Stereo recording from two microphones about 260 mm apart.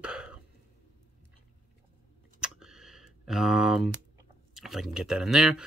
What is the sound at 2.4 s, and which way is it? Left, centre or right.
Computer keyboard, centre.